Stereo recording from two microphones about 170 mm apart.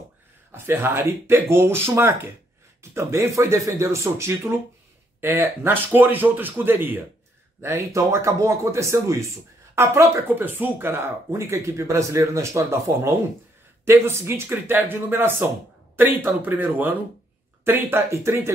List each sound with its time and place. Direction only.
0.5 s speech: 15° right (ahead or behind)